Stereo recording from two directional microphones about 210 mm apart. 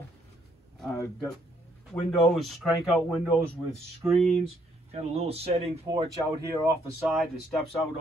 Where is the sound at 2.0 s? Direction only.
Centre (ahead or behind).